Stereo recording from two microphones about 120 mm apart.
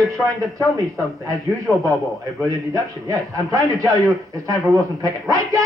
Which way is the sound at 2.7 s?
30° right (ahead or behind).